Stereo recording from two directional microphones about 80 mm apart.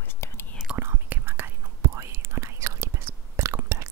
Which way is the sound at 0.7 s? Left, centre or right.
Right.